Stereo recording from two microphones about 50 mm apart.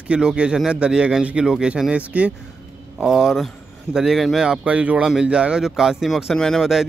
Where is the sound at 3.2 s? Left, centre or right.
Centre.